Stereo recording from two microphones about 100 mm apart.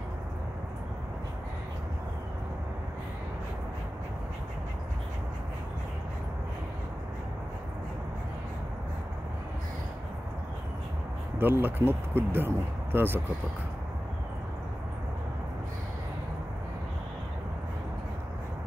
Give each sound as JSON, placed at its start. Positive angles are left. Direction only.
{"t": 11.3, "sound": "speech", "side_deg": -20}